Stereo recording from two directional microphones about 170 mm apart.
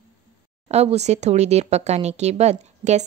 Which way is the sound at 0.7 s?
40° right (ahead or behind).